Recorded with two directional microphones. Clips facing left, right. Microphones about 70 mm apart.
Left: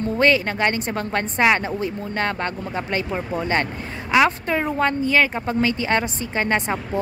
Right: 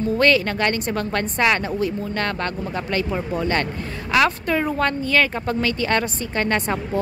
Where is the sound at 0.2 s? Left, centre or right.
Left.